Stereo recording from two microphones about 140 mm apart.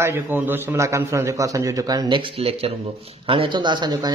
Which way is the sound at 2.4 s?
45° right (ahead or behind).